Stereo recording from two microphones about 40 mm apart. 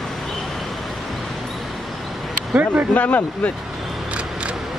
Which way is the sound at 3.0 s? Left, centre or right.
Left.